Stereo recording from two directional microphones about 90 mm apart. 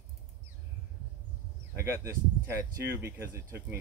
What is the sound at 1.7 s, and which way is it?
Speech, 30° right (ahead or behind).